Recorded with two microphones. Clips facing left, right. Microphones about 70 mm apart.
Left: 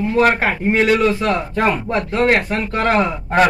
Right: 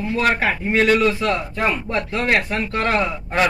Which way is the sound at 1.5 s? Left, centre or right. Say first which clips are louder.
Left 4 dB; left.